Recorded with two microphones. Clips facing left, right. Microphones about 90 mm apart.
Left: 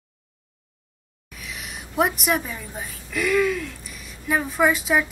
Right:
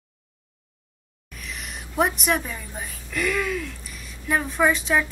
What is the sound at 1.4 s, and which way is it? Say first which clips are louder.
A woman's voice: even; centre (ahead or behind).